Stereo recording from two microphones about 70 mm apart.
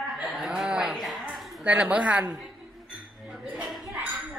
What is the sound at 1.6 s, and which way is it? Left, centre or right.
Speech, centre.